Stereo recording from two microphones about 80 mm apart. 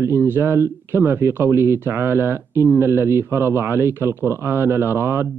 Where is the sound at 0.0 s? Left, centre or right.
Right.